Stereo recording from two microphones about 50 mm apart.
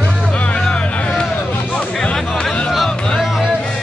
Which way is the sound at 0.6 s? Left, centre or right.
Centre.